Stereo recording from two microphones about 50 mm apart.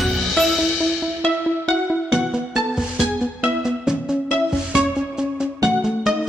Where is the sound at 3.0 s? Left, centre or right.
Centre.